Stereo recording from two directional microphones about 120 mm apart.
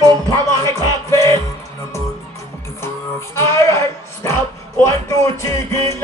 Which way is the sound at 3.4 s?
25° left (ahead or behind).